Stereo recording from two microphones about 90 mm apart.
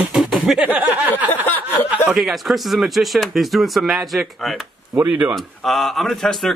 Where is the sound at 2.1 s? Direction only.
Centre (ahead or behind).